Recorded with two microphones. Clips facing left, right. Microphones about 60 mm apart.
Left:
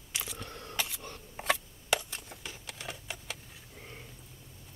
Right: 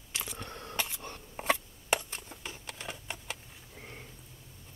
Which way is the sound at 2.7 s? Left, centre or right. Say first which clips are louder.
Even; right.